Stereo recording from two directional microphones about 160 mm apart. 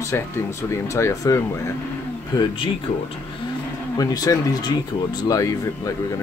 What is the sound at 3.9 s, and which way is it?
Speech, 25° left (ahead or behind).